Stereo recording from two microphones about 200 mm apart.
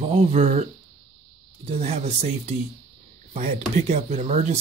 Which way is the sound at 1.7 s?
30° right (ahead or behind).